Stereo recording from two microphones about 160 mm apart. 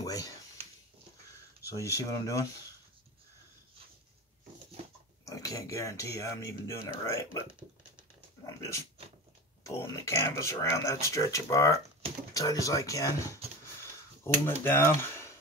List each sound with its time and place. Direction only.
0.0 s a sound: 20° left (ahead or behind)
1.7 s speech: 20° left (ahead or behind)
5.2 s speech: 20° left (ahead or behind)
8.5 s speech: 15° left (ahead or behind)
14.4 s speech: 15° left (ahead or behind)